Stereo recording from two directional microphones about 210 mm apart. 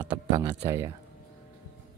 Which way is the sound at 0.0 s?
20° right (ahead or behind).